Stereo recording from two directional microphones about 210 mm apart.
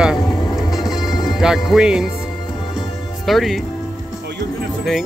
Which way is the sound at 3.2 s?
Centre (ahead or behind).